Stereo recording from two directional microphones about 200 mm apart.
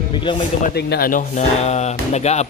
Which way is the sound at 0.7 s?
50° left (ahead or behind).